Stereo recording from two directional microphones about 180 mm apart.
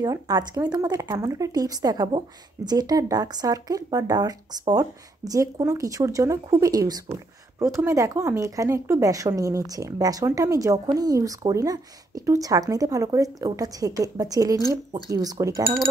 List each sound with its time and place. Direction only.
0.0 s speech: 20° right (ahead or behind)